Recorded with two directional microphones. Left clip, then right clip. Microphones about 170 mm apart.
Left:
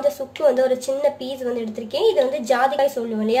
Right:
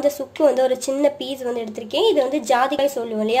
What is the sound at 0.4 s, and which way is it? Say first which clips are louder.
A woman's voice: right 1 dB; 30° right (ahead or behind).